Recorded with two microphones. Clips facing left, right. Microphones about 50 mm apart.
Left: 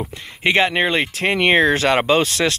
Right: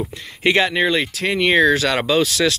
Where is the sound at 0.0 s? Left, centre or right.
Left.